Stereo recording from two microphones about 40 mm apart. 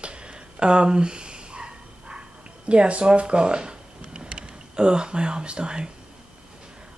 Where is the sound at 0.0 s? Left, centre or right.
Right.